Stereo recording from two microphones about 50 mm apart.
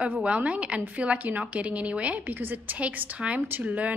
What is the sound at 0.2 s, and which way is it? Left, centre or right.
A woman's voice, right.